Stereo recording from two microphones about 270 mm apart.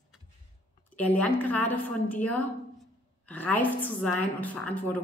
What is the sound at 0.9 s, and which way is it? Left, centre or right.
A woman's voice, centre.